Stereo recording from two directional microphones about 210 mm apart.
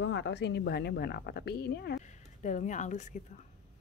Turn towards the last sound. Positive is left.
turn(degrees=35)  # may be behind; listen again after turning